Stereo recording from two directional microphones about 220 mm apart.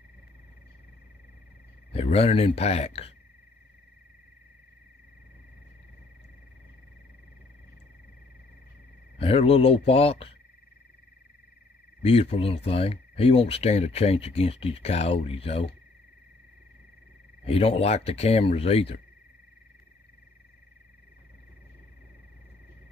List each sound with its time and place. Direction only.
1.9 s speech: 25° left (ahead or behind)
9.2 s speech: 25° left (ahead or behind)
12.0 s speech: 25° left (ahead or behind)
17.5 s speech: 25° left (ahead or behind)